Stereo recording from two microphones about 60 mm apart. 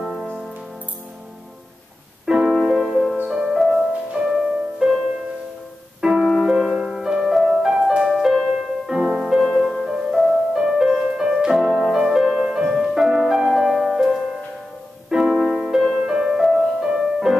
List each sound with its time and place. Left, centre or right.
0.0 s music: centre
2.2 s music: centre
3.7 s music: centre
4.3 s music: centre
12.4 s music: centre
12.7 s music: centre